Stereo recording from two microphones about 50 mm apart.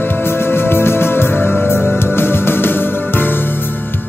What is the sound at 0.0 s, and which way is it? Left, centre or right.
Music, left.